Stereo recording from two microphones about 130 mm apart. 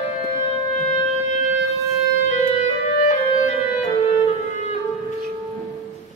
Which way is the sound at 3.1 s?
65° left (ahead or behind).